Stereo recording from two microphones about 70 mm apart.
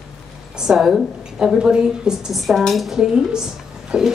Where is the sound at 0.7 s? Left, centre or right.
Centre.